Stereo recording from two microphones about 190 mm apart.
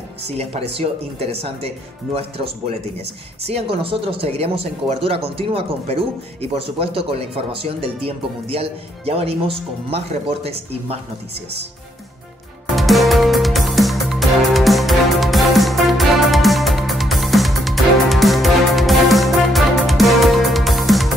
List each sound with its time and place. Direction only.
0.4 s speech: 30° right (ahead or behind)
12.7 s music: centre (ahead or behind)